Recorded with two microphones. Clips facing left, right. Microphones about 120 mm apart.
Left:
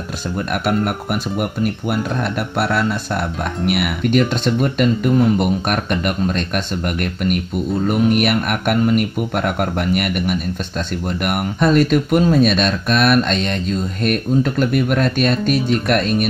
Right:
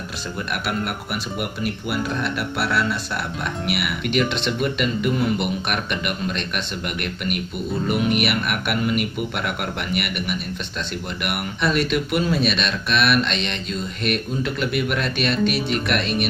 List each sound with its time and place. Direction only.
1.4 s speech: 45° left (ahead or behind)